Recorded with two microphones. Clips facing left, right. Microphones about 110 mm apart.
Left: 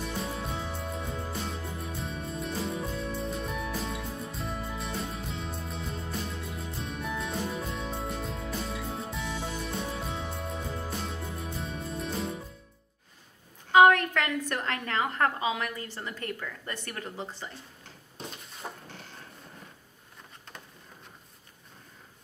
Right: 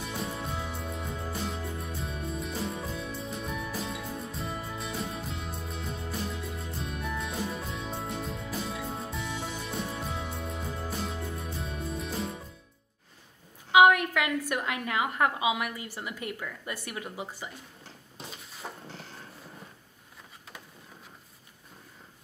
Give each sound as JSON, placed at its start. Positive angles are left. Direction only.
{"t": 0.2, "sound": "music", "side_deg": 0}
{"t": 13.7, "sound": "a woman's voice", "side_deg": -10}
{"t": 18.1, "sound": "a sound", "side_deg": 0}